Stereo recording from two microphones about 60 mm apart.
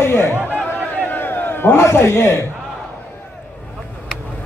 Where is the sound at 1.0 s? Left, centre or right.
Left.